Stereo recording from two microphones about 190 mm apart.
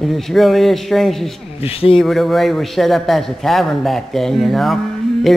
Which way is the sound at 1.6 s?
30° left (ahead or behind).